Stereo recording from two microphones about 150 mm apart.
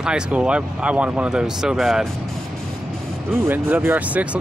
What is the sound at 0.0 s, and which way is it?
Speech, 5° right (ahead or behind).